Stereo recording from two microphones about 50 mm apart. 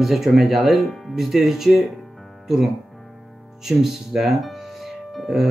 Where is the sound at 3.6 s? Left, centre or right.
Centre.